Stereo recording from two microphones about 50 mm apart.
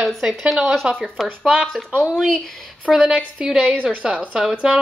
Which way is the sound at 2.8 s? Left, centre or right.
Centre.